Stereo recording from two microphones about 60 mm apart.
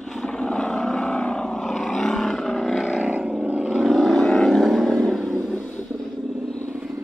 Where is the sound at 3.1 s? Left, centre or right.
Right.